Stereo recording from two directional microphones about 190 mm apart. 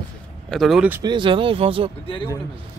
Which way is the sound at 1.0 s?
25° right (ahead or behind).